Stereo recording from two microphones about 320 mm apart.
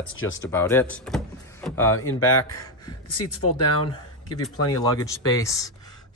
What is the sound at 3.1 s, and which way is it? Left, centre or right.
Speech, left.